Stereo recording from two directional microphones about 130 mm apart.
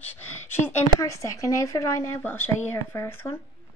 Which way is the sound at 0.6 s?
25° left (ahead or behind).